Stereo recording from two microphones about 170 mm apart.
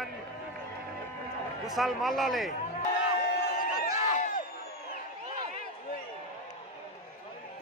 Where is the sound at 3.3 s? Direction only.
60° left (ahead or behind).